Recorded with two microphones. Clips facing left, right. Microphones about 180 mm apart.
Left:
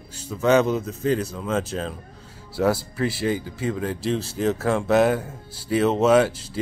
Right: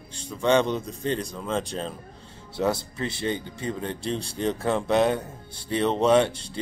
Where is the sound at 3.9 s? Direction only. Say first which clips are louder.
Left 4 dB; 5° left (ahead or behind).